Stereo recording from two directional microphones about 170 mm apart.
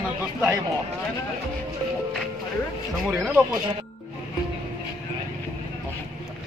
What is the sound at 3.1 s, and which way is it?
Speech, 5° right (ahead or behind).